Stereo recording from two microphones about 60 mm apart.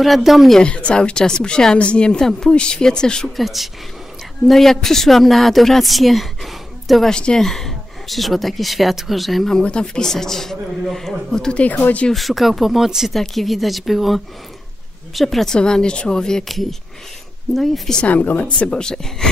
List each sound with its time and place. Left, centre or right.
0.0 s a woman's voice: centre
0.6 s a woman's voice: centre
3.3 s a woman's voice: centre
7.1 s a woman's voice: centre
9.6 s a woman's voice: centre
11.6 s speech: left
12.1 s a woman's voice: centre
17.6 s a woman's voice: centre
18.0 s speech: left
18.4 s a woman's voice: centre